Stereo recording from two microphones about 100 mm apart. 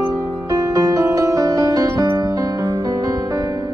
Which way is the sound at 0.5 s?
35° right (ahead or behind).